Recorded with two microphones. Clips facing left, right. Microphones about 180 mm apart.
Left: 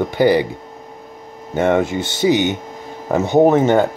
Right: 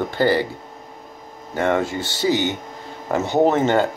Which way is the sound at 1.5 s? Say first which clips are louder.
Left 4 dB; 20° left (ahead or behind).